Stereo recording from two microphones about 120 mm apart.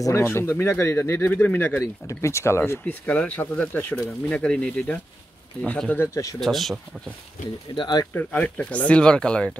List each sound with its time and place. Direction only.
0.0 s speech: 20° left (ahead or behind)
6.4 s speech: centre (ahead or behind)
7.7 s speech: 35° left (ahead or behind)
8.1 s speech: 15° left (ahead or behind)